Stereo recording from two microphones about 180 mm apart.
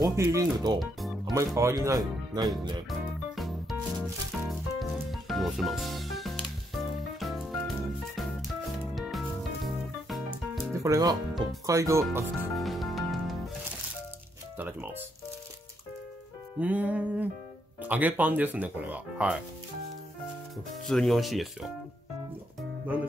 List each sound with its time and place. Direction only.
0.0 s speech: 15° right (ahead or behind)
0.7 s music: centre (ahead or behind)
1.3 s speech: 15° right (ahead or behind)
2.9 s music: centre (ahead or behind)
10.7 s speech: 20° right (ahead or behind)
12.5 s music: centre (ahead or behind)
14.6 s music: 10° right (ahead or behind)
16.5 s speech: 10° right (ahead or behind)
20.8 s speech: centre (ahead or behind)